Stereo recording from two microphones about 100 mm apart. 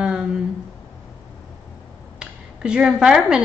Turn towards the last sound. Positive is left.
turn(degrees=-10)  # may be behind; listen again after turning